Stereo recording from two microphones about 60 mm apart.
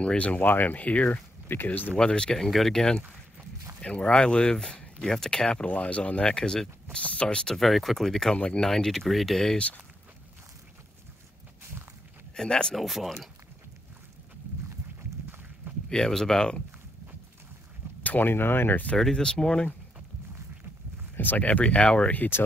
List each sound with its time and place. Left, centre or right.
0.0 s speech: centre
0.5 s speech: left
2.0 s speech: centre
3.8 s speech: centre
12.4 s speech: centre
12.7 s speech: centre
15.9 s speech: centre
18.0 s speech: left
18.9 s speech: centre
21.2 s speech: left
21.5 s speech: centre
22.1 s speech: left